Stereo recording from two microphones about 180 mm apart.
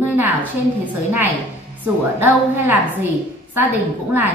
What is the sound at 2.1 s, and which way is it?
Speech, 10° right (ahead or behind).